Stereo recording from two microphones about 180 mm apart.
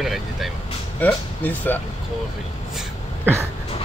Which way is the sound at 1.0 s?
10° left (ahead or behind).